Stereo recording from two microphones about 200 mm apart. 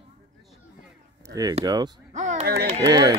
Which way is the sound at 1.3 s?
20° right (ahead or behind).